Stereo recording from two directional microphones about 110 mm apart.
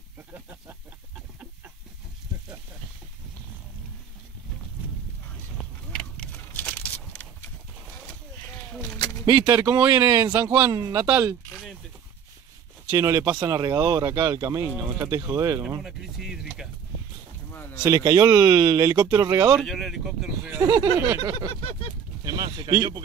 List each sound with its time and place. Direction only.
0.3 s snake: 15° right (ahead or behind)
5.9 s a sound: 10° left (ahead or behind)
9.5 s speech: 30° right (ahead or behind)
12.9 s speech: 30° right (ahead or behind)
15.8 s speech: 5° right (ahead or behind)
17.5 s a sound: 20° left (ahead or behind)
17.8 s speech: 35° right (ahead or behind)
19.6 s speech: centre (ahead or behind)
20.6 s speech: 30° right (ahead or behind)
21.2 s a sound: 45° right (ahead or behind)